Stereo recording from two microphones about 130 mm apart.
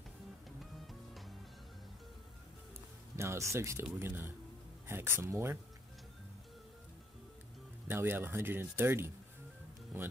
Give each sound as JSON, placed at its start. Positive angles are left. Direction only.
{"t": 0.6, "sound": "music", "side_deg": 0}
{"t": 3.2, "sound": "speech", "side_deg": -20}
{"t": 7.9, "sound": "speech", "side_deg": -15}